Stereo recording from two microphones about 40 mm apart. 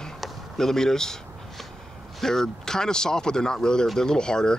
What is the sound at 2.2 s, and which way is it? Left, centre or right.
Speech, centre.